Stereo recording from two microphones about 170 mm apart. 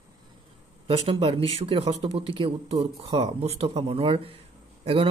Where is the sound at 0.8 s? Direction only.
35° right (ahead or behind).